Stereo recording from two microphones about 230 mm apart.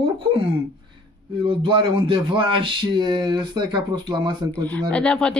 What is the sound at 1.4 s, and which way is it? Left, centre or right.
Speech, right.